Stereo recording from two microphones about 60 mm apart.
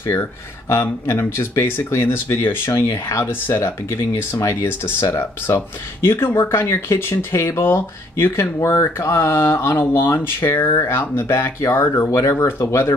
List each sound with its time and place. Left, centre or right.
0.0 s speech: left